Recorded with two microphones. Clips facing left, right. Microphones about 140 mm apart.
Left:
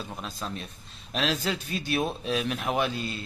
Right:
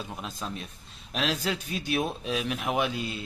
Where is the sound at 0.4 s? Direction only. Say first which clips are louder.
Left 1 dB; centre (ahead or behind).